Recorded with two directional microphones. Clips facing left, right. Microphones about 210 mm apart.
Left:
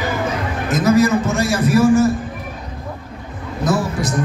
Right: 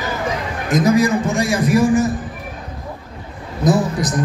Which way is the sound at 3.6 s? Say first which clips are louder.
Right 3 dB; 20° right (ahead or behind).